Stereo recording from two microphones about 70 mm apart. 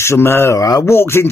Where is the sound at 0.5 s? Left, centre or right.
Left.